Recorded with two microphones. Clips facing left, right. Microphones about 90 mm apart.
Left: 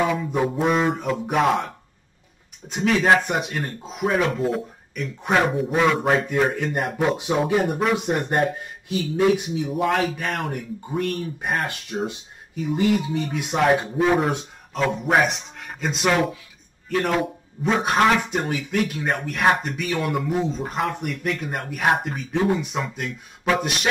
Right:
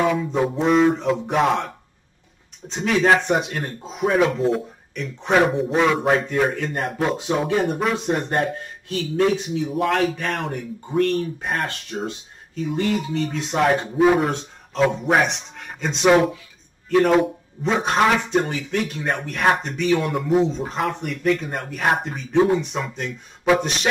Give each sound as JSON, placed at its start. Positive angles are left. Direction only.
{"t": 0.0, "sound": "a man's voice", "side_deg": 0}
{"t": 2.7, "sound": "a man's voice", "side_deg": 0}
{"t": 13.6, "sound": "a man's voice", "side_deg": 0}